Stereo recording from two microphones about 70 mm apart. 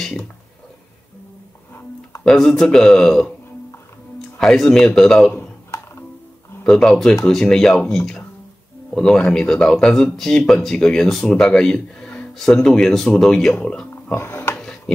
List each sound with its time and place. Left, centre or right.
2.2 s speech: centre
4.4 s speech: centre
6.6 s speech: centre
14.1 s music: left
14.5 s a sound: centre